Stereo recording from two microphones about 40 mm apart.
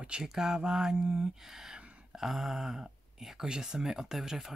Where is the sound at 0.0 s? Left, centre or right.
Right.